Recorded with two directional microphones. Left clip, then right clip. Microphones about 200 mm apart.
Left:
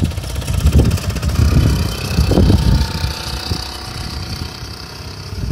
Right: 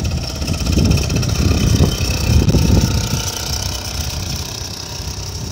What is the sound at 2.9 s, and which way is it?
Ratchet, 30° right (ahead or behind).